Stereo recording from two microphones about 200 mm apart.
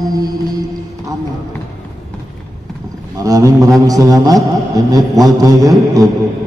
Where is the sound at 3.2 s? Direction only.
15° right (ahead or behind).